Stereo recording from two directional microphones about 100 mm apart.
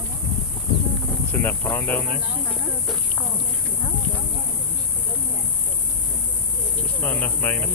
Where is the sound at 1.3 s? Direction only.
20° left (ahead or behind).